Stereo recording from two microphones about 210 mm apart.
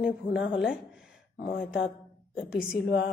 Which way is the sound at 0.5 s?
5° right (ahead or behind).